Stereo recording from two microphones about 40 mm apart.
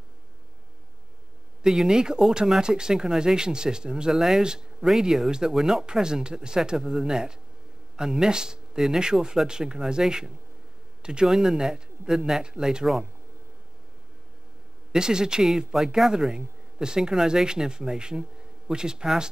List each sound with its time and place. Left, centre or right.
1.6 s speech: centre
4.1 s speech: centre
4.4 s speech: centre
11.0 s a sound: right
11.2 s speech: centre
14.9 s speech: centre